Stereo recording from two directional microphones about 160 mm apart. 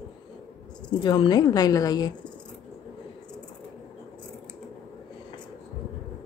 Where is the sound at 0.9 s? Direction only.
30° left (ahead or behind).